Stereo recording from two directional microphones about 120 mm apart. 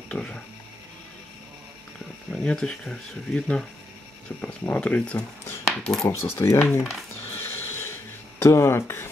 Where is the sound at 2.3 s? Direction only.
5° left (ahead or behind).